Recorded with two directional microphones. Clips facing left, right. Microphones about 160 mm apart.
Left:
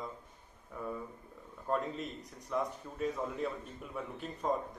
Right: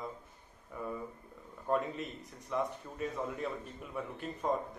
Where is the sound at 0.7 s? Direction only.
5° right (ahead or behind).